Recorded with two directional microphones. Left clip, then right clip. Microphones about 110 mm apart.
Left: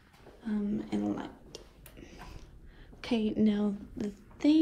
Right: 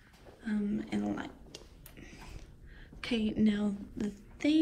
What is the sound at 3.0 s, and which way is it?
Speech, 25° left (ahead or behind).